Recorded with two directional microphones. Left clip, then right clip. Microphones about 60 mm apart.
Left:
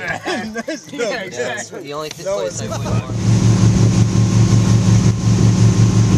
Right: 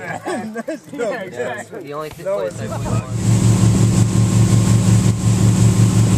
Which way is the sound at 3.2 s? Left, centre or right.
Left.